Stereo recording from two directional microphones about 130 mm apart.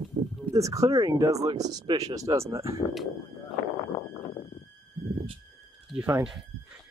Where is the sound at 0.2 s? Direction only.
50° right (ahead or behind).